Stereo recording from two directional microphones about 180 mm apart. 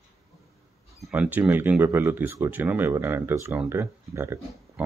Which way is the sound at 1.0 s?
5° right (ahead or behind).